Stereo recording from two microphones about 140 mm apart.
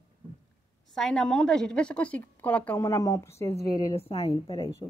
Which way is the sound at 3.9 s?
45° left (ahead or behind).